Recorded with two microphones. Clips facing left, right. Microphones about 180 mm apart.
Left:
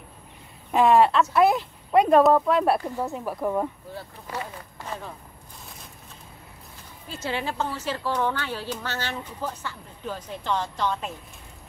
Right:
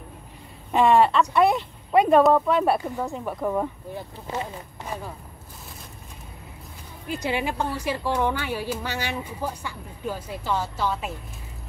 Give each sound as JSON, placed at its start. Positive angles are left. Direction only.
{"t": 0.7, "sound": "speech", "side_deg": 0}
{"t": 3.9, "sound": "speech", "side_deg": -20}
{"t": 4.8, "sound": "speech", "side_deg": -10}
{"t": 7.1, "sound": "a woman's voice", "side_deg": -15}